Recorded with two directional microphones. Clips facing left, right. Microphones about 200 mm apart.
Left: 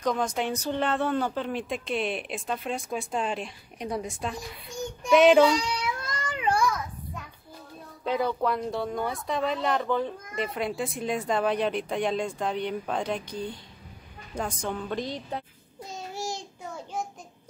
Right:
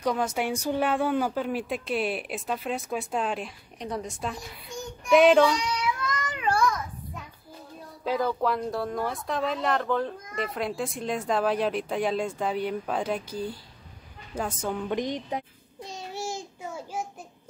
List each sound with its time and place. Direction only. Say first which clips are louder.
0.0 s speech: even; 5° right (ahead or behind)
5.4 s baby cry: left 1 dB; 30° left (ahead or behind)
8.0 s speech: even; centre (ahead or behind)
15.0 s speech: right 3 dB; 15° right (ahead or behind)
15.8 s child singing: even; centre (ahead or behind)